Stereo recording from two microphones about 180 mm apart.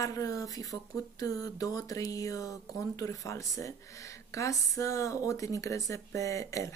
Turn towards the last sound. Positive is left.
turn(degrees=15)  # may be behind; listen again after turning